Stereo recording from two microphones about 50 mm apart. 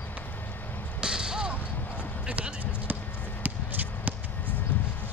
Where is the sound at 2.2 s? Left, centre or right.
Right.